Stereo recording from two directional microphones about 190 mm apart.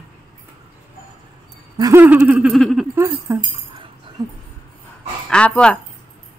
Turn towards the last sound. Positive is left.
turn(degrees=5)  # may be behind; listen again after turning